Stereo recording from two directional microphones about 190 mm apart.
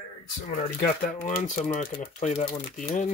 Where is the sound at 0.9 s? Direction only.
45° left (ahead or behind).